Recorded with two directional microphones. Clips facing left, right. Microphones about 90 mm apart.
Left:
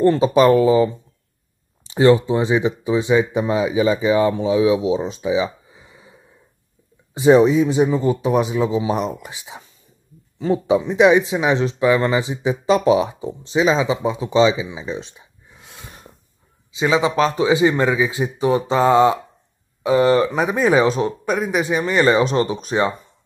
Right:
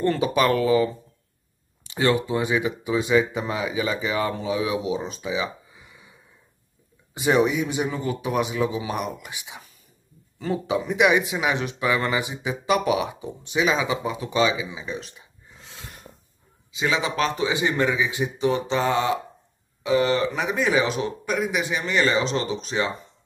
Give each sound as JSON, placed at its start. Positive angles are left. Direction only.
{"t": 0.0, "sound": "speech", "side_deg": 25}
{"t": 1.9, "sound": "speech", "side_deg": 25}
{"t": 7.4, "sound": "speech", "side_deg": 25}
{"t": 15.6, "sound": "snort", "side_deg": 10}
{"t": 16.7, "sound": "a man's voice", "side_deg": 30}